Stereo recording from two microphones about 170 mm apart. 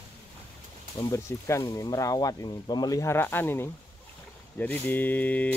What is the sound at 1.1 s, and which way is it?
Speech, 20° left (ahead or behind).